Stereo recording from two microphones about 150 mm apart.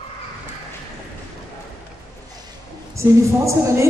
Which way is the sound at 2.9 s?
20° right (ahead or behind).